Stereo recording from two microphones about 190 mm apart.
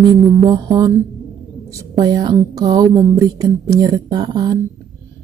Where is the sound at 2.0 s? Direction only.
20° right (ahead or behind).